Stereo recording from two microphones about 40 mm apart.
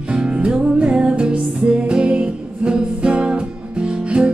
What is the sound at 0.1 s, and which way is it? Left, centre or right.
Music, right.